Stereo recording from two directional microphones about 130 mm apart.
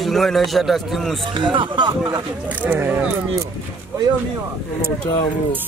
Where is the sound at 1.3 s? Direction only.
40° right (ahead or behind).